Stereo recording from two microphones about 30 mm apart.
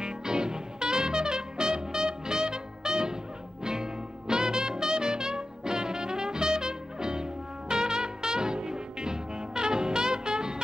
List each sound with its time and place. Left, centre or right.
0.0 s music: right